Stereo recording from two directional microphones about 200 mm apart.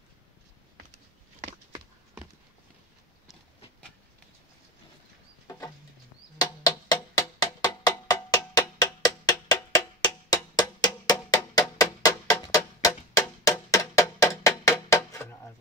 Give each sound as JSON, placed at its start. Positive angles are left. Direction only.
{"t": 6.3, "sound": "music", "side_deg": 20}